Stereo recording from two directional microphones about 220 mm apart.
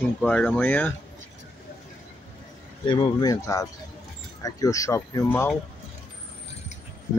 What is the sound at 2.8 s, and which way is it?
Speech, 20° left (ahead or behind).